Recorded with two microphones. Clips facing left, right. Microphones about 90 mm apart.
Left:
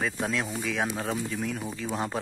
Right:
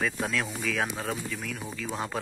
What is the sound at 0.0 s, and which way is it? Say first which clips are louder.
Speech: even; 25° left (ahead or behind).